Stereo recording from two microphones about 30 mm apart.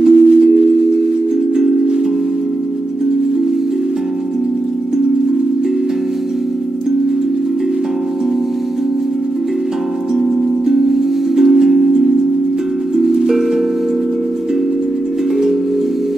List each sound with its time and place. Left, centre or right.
0.0 s chime: centre
0.4 s wind chime: centre
10.7 s music: centre
11.7 s wind chime: centre
12.9 s music: centre